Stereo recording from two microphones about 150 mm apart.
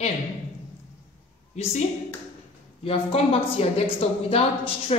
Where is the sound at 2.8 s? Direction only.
40° left (ahead or behind).